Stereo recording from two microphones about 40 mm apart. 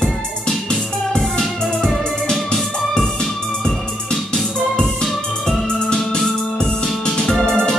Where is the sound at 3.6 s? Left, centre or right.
Centre.